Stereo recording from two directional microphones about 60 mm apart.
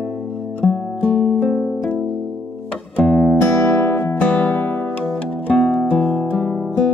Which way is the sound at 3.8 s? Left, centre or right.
Left.